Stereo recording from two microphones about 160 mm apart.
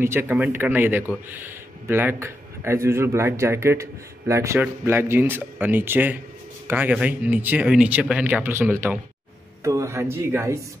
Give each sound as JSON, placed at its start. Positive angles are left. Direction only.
{"t": 0.0, "sound": "speech", "side_deg": -15}